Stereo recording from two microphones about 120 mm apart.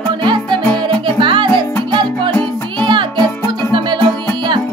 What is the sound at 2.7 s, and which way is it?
Music, 40° right (ahead or behind).